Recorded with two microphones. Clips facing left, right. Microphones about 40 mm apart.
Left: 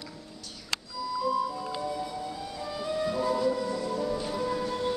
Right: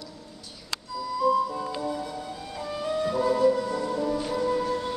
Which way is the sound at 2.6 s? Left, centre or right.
Right.